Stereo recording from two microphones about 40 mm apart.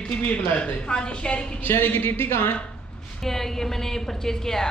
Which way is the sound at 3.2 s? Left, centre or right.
Centre.